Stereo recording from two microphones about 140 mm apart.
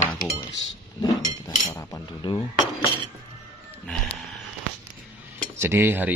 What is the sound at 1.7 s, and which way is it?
Cutlery, 25° left (ahead or behind).